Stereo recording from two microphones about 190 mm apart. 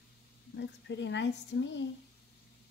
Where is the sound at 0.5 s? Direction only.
70° left (ahead or behind).